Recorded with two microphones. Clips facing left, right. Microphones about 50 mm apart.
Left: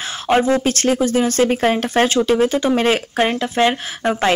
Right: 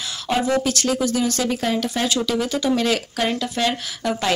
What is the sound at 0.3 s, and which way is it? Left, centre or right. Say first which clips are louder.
Speech: left 5 dB; left.